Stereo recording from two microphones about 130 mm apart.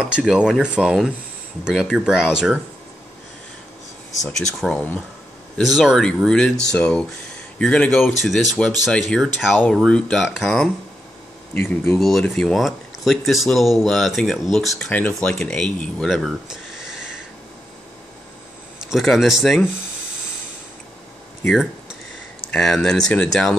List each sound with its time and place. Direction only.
0.0 s speech: 5° right (ahead or behind)
4.2 s speech: 5° left (ahead or behind)
11.5 s speech: 15° left (ahead or behind)
12.0 s speech: centre (ahead or behind)
14.9 s speech: 10° left (ahead or behind); by 17.1 s 5° right (ahead or behind)
18.9 s speech: centre (ahead or behind)
21.5 s speech: 5° right (ahead or behind)